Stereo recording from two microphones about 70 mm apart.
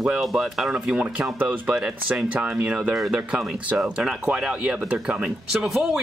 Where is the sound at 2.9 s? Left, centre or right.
Centre.